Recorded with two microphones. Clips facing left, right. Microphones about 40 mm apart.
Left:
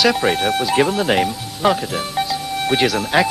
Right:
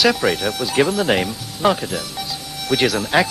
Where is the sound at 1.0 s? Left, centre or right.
Centre.